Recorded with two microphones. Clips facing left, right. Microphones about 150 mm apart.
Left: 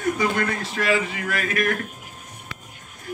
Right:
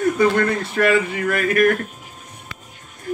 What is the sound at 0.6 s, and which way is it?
Speech, 60° right (ahead or behind).